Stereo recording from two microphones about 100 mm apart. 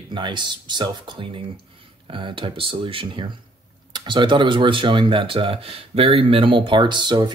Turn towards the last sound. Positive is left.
turn(degrees=-50)  # may be behind; listen again after turning